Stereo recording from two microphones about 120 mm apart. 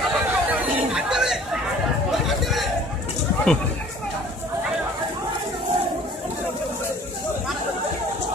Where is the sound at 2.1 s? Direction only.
Centre (ahead or behind).